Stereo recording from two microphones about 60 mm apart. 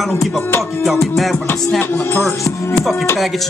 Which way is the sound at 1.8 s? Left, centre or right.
Left.